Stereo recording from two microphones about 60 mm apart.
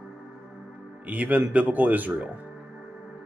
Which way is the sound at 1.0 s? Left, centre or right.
Right.